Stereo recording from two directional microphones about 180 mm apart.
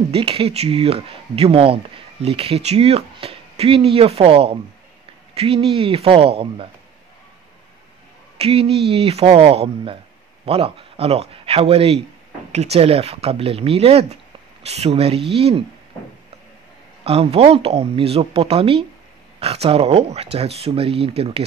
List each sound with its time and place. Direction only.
0.1 s speech: 30° right (ahead or behind)
8.4 s speech: 30° right (ahead or behind)
17.0 s speech: 30° right (ahead or behind)